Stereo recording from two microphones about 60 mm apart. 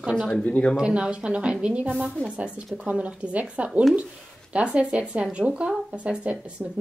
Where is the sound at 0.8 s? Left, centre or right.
Centre.